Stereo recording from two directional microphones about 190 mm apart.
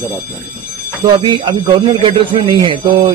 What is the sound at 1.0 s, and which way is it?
Speech, 25° right (ahead or behind).